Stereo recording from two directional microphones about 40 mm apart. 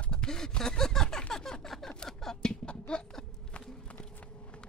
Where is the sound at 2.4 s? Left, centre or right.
Left.